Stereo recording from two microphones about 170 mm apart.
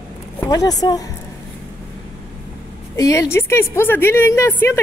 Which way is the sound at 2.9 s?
20° left (ahead or behind).